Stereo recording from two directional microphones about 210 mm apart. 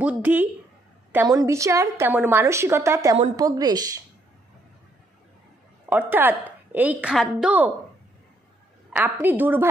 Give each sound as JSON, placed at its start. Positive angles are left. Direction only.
{"t": 0.0, "sound": "a woman's voice", "side_deg": -10}
{"t": 5.9, "sound": "a woman's voice", "side_deg": -10}
{"t": 8.9, "sound": "a woman's voice", "side_deg": -10}